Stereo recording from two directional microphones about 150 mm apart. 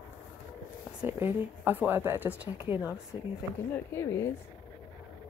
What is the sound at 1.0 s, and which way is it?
Speech, 15° right (ahead or behind).